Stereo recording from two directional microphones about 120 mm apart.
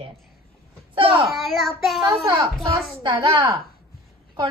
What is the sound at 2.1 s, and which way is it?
A woman's voice, 55° right (ahead or behind).